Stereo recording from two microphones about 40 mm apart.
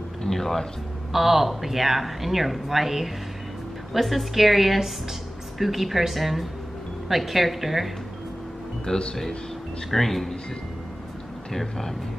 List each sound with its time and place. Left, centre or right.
0.2 s a sound: centre
1.1 s speech: centre
8.8 s speech: left
9.8 s speech: centre
11.5 s speech: centre